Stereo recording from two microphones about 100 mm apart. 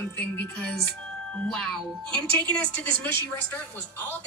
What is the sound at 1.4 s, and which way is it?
Speech, 5° left (ahead or behind).